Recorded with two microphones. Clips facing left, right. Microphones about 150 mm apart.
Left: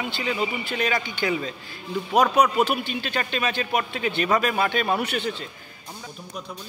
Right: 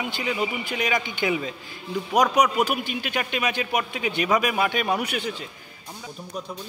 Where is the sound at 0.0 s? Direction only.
15° right (ahead or behind).